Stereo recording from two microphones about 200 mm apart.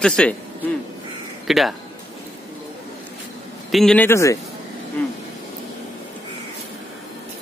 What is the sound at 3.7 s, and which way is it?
Speech, centre (ahead or behind).